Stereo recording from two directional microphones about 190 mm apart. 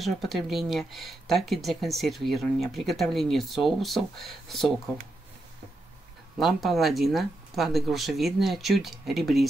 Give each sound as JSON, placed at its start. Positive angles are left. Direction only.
{"t": 0.0, "sound": "speech", "side_deg": 0}
{"t": 6.4, "sound": "speech", "side_deg": 0}